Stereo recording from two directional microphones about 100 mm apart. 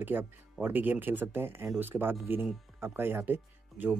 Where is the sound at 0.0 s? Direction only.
20° right (ahead or behind).